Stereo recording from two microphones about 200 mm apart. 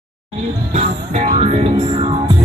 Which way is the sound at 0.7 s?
35° right (ahead or behind).